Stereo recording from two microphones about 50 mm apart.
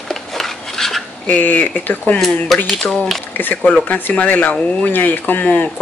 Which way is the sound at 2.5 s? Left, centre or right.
Centre.